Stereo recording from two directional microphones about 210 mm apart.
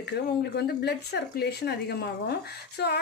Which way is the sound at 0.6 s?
50° left (ahead or behind).